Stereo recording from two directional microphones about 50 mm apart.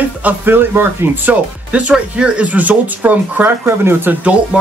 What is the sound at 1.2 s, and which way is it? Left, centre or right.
Speech, right.